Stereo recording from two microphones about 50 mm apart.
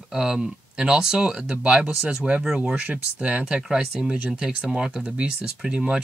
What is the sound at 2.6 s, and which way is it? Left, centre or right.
Speech, right.